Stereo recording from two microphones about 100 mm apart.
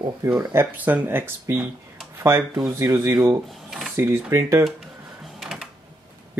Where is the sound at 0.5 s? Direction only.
15° right (ahead or behind).